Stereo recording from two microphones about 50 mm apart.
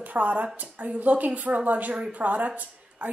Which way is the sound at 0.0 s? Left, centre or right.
Right.